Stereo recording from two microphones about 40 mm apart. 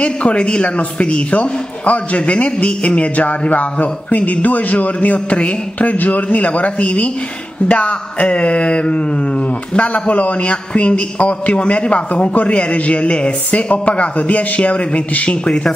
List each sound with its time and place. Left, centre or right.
0.0 s a man's voice: left